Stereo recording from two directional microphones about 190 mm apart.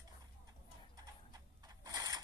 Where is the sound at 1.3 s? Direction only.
20° right (ahead or behind).